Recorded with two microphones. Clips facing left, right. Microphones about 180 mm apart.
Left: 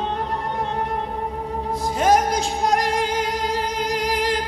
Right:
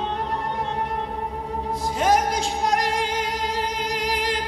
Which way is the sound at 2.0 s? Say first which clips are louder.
Left 3 dB; 45° left (ahead or behind).